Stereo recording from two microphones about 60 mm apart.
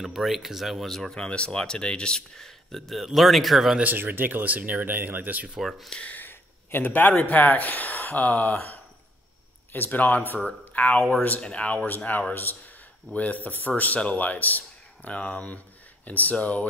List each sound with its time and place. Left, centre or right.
0.0 s speech: centre
3.8 s speech: right
5.6 s speech: centre
6.0 s speech: left
9.7 s speech: left
11.0 s speech: centre
11.2 s speech: left